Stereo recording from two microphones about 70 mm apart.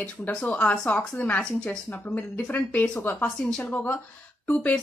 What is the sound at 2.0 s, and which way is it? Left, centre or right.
A woman's voice, left.